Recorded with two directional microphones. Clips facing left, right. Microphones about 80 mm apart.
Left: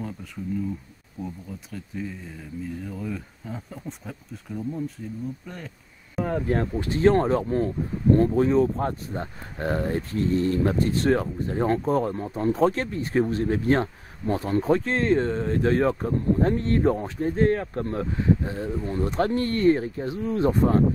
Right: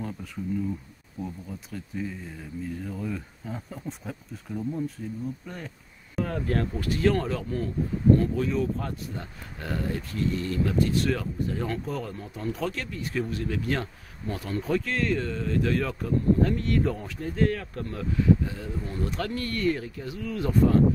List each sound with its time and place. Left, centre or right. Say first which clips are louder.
1.9 s speech: even; centre
6.2 s speech: left 4 dB; centre